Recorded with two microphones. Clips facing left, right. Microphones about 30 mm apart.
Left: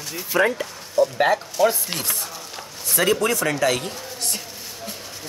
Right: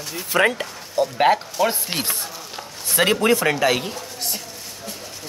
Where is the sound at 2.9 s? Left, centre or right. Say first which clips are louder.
Right 2 dB; right.